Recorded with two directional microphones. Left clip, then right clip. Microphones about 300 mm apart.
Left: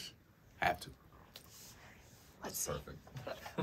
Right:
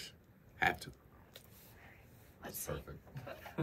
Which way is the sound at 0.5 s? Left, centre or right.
Centre.